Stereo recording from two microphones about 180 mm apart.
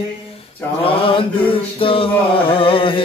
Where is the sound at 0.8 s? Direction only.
30° left (ahead or behind).